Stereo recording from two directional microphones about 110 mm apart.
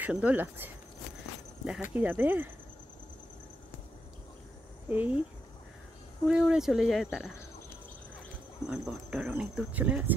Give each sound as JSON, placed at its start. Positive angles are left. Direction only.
{"t": 0.0, "sound": "speech", "side_deg": -15}
{"t": 1.8, "sound": "speech", "side_deg": -15}
{"t": 4.8, "sound": "speech", "side_deg": -15}
{"t": 6.2, "sound": "speech", "side_deg": -5}
{"t": 8.6, "sound": "speech", "side_deg": -10}